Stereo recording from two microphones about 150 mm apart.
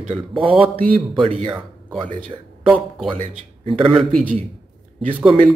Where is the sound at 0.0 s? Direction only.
35° right (ahead or behind).